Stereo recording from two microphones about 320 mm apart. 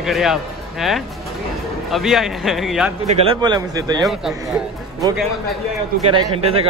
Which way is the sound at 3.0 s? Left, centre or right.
Centre.